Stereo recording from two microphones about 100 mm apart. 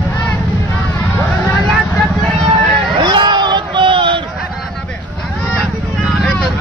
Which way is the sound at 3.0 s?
45° right (ahead or behind).